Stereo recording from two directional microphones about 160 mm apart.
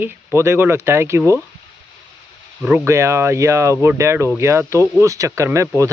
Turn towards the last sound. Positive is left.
turn(degrees=-20)  # may be behind; listen again after turning